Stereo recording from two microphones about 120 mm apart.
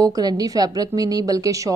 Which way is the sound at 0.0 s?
30° right (ahead or behind).